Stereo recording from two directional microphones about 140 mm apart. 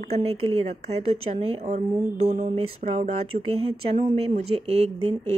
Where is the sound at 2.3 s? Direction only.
60° right (ahead or behind).